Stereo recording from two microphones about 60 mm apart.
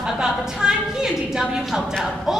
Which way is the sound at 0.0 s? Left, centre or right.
Centre.